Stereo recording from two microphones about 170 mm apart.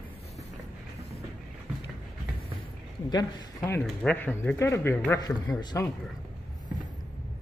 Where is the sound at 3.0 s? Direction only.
25° left (ahead or behind).